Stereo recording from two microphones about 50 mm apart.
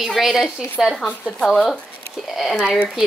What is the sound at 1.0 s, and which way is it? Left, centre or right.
A child's voice, centre.